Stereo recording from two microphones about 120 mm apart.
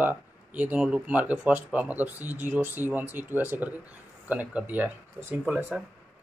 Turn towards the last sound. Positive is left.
turn(degrees=-10)  # may be behind; listen again after turning